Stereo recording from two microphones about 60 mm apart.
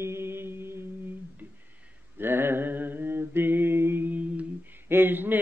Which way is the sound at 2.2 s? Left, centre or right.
Right.